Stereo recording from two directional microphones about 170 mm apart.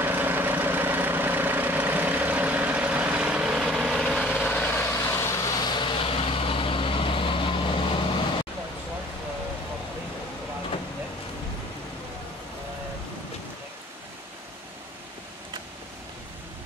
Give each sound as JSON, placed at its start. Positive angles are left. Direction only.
{"t": 0.0, "sound": "vehicle", "side_deg": -10}
{"t": 5.7, "sound": "vehicle", "side_deg": 30}